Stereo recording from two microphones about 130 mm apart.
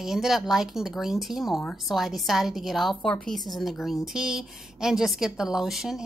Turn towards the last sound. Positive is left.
turn(degrees=0)  # may be behind; listen again after turning